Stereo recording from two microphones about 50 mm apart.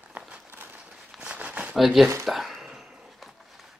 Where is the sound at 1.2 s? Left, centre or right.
Right.